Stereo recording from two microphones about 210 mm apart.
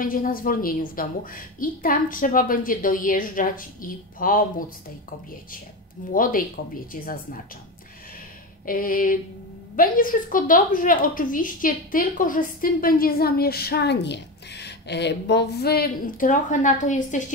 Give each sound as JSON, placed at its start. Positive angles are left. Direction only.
{"t": 0.0, "sound": "a woman's voice", "side_deg": 40}
{"t": 6.0, "sound": "a woman's voice", "side_deg": 40}
{"t": 8.6, "sound": "a woman's voice", "side_deg": 40}